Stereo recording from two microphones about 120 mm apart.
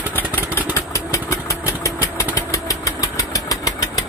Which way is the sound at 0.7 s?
25° left (ahead or behind).